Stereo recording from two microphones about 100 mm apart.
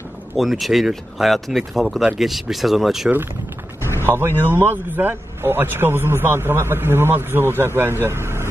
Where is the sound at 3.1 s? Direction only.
20° right (ahead or behind).